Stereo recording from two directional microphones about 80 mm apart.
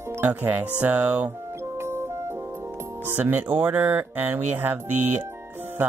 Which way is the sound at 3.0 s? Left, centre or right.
Right.